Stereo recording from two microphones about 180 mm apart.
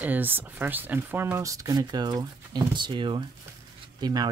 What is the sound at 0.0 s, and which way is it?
Speech, 10° right (ahead or behind).